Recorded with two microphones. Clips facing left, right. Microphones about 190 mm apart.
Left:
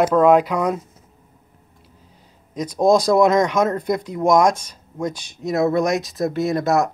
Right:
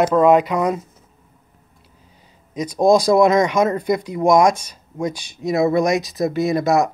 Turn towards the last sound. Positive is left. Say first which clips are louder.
# right 2 dB
turn(degrees=-10)  # may be behind; listen again after turning